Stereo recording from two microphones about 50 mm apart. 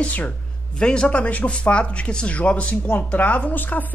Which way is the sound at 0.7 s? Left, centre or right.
Centre.